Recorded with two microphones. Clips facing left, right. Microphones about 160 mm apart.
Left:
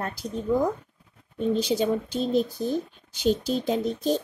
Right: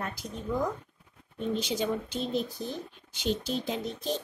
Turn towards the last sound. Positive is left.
turn(degrees=40)  # may be behind; listen again after turning